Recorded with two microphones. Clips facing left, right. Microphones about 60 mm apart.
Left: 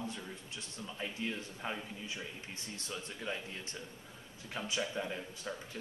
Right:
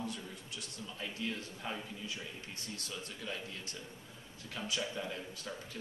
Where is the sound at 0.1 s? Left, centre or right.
Left.